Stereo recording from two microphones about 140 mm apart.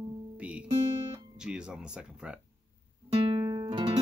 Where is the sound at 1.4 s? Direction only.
5° right (ahead or behind).